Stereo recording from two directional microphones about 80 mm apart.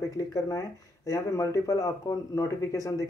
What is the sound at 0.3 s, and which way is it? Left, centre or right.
Speech, left.